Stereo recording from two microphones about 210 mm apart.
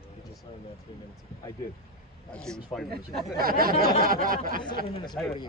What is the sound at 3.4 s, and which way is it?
Speech, 45° right (ahead or behind).